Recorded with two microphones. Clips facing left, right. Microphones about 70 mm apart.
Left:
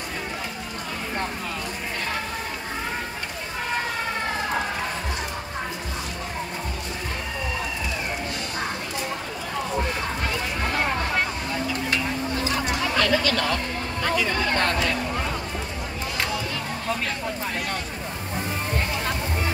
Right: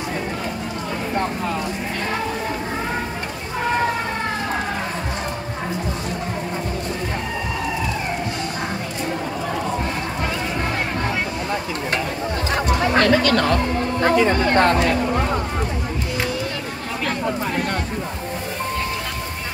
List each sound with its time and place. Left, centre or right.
12.4 s music: right